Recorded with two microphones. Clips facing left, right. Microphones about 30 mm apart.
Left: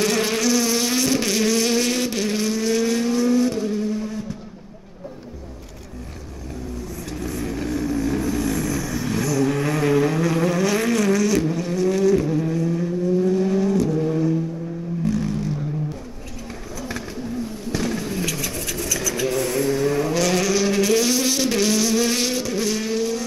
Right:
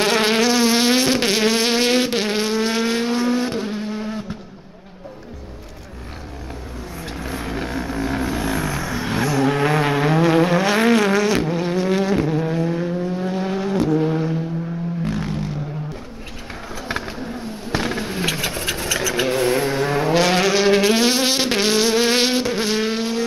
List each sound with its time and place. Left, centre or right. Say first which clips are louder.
0.0 s insect: right 4 dB; right
7.0 s vehicle: right 1 dB; right
16.8 s a sound: right 3 dB; right